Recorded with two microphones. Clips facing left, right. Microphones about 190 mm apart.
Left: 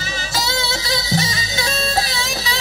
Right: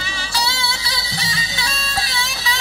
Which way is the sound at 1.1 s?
45° left (ahead or behind).